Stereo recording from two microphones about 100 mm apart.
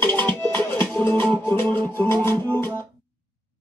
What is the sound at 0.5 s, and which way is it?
Music, 20° left (ahead or behind).